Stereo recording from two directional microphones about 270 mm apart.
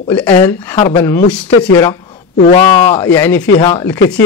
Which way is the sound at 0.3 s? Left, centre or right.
Centre.